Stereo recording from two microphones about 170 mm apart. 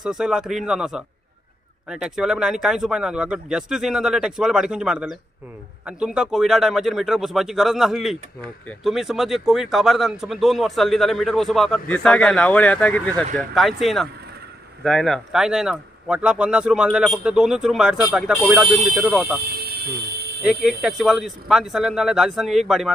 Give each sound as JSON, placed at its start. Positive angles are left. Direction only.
{"t": 0.0, "sound": "speech", "side_deg": -5}
{"t": 19.6, "sound": "fire alarm", "side_deg": -65}
{"t": 20.6, "sound": "speech", "side_deg": 0}